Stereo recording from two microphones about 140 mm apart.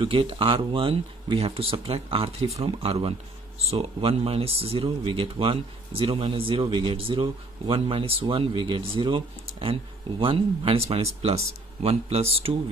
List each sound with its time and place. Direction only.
0.0 s speech: 40° right (ahead or behind)